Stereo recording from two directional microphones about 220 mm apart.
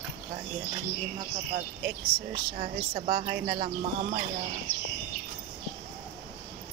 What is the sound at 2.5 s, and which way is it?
Speech, 25° right (ahead or behind).